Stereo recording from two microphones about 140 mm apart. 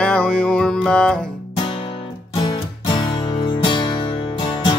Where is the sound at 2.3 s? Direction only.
35° left (ahead or behind).